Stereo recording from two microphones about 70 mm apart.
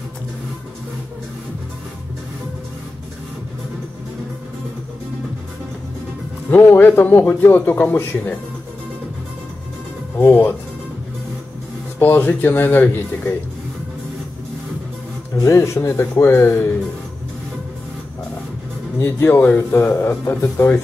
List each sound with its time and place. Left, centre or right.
6.5 s a man's voice: left
10.1 s music: left
12.0 s speech: left
15.3 s speech: left
18.9 s speech: left
19.4 s speech: left